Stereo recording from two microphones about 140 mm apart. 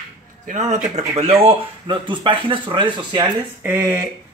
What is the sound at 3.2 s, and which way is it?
Speech, 15° right (ahead or behind).